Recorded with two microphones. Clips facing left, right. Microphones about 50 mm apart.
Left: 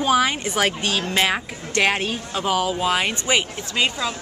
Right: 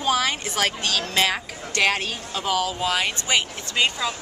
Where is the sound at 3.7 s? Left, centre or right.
Centre.